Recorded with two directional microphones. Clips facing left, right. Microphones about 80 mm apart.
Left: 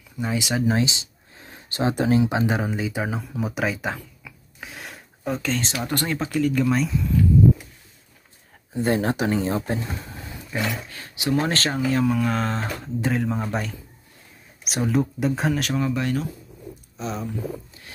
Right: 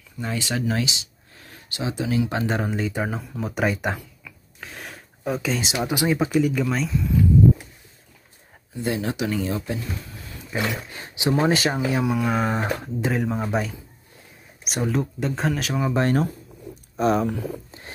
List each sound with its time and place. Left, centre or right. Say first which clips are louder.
0.2 s speech: left 3 dB; centre
1.7 s speech: left 5 dB; left
2.2 s speech: left 2 dB; centre
6.5 s speech: left 2 dB; centre
8.7 s speech: left 4 dB; left
10.5 s speech: right 1 dB; right
13.0 s speech: left 1 dB; centre
15.9 s speech: right 4 dB; right
16.9 s speech: right 10 dB; right
17.6 s a sound: right 4 dB; right